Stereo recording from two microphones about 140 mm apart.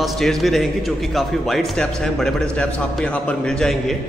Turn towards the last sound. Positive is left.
turn(degrees=5)  # may be behind; listen again after turning